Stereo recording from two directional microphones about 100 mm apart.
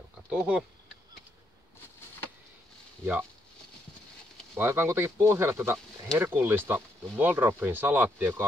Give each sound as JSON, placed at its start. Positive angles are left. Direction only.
{"t": 0.3, "sound": "speech", "side_deg": -10}
{"t": 4.6, "sound": "speech", "side_deg": -25}